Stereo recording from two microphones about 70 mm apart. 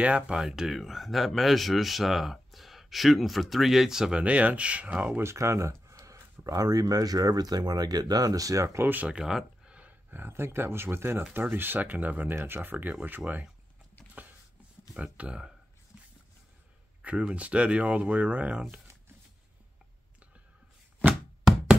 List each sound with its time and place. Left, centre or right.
0.0 s speech: centre
0.4 s speech: centre; by 5.2 s right
5.2 s speech: right
8.8 s speech: right
9.1 s speech: centre
15.1 s speech: centre
17.0 s speech: centre
21.1 s a sound: centre